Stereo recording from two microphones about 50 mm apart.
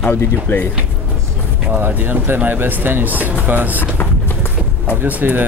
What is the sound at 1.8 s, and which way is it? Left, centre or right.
Speech, right.